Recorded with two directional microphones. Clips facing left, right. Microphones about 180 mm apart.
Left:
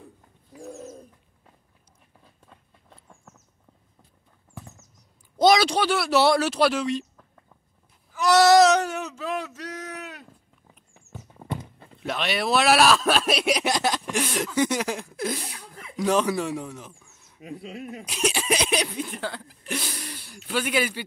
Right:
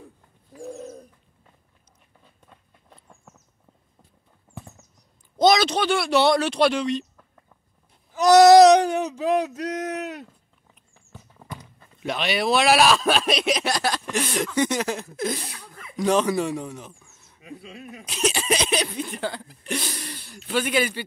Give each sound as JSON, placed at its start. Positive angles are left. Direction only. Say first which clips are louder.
{"t": 2.2, "sound": "rodents", "louder": "even", "side_deg": 0}
{"t": 5.4, "sound": "speech", "louder": "even", "side_deg": 10}
{"t": 8.1, "sound": "babbling", "louder": "right 5 dB", "side_deg": -40}
{"t": 8.6, "sound": "a sound", "louder": "right 6 dB", "side_deg": -35}
{"t": 11.1, "sound": "clip-clop", "louder": "left 6 dB", "side_deg": 25}
{"t": 12.0, "sound": "speech", "louder": "right 2 dB", "side_deg": 0}
{"t": 14.0, "sound": "speech", "louder": "right 1 dB", "side_deg": 10}
{"t": 17.4, "sound": "speech", "louder": "left 4 dB", "side_deg": 30}
{"t": 18.0, "sound": "speech", "louder": "right 2 dB", "side_deg": 10}